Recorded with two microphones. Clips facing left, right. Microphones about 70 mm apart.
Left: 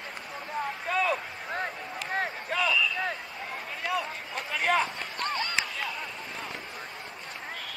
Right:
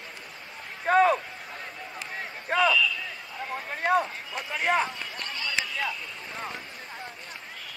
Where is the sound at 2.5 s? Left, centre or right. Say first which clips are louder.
Right 6 dB; right.